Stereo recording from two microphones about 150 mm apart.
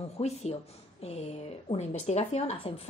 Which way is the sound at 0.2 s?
45° left (ahead or behind).